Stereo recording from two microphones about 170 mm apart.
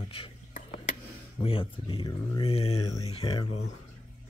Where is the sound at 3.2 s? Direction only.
25° left (ahead or behind).